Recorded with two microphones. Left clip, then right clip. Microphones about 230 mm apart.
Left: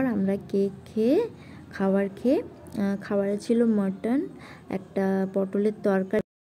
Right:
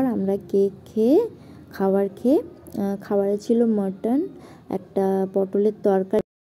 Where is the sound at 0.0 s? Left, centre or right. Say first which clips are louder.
Right 4 dB; centre.